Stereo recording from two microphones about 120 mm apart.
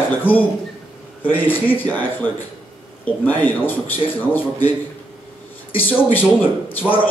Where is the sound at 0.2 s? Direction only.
15° left (ahead or behind).